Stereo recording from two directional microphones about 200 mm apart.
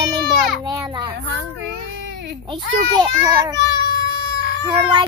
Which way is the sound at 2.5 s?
20° right (ahead or behind).